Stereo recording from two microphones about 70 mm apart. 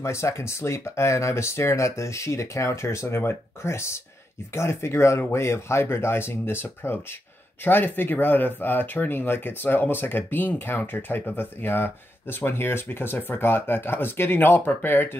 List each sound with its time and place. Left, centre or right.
0.0 s speech: left